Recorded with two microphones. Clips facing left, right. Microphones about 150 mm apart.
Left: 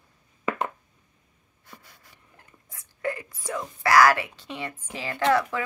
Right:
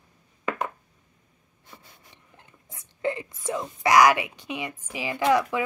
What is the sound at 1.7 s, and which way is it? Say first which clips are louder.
Whispering: even; 25° right (ahead or behind).